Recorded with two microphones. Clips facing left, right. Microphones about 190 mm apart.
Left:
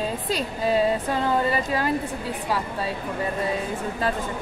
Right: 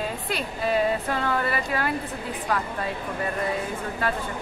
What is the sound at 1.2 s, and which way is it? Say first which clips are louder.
Speech: left 5 dB; 20° left (ahead or behind).